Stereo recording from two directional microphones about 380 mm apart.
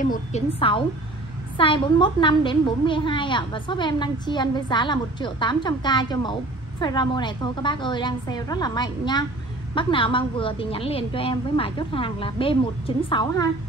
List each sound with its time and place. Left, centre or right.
0.0 s a woman's voice: centre